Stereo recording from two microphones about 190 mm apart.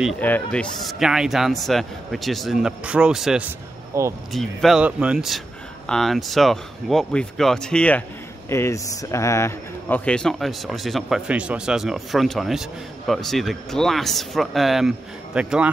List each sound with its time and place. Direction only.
0.2 s speech: 5° left (ahead or behind)
3.9 s speech: 15° right (ahead or behind)
4.3 s speech: centre (ahead or behind)